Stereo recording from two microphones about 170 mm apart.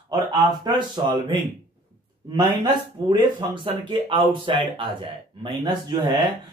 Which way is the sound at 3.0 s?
30° right (ahead or behind).